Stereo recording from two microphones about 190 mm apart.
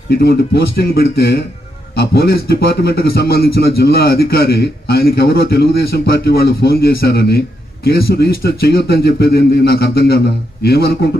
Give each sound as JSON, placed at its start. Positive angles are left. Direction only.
{"t": 0.1, "sound": "a man's voice", "side_deg": 55}